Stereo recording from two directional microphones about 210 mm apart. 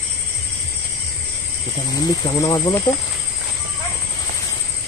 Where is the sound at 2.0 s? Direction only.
20° left (ahead or behind).